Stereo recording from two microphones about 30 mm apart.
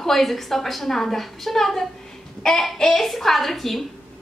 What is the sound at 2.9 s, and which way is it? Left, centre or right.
Speech, centre.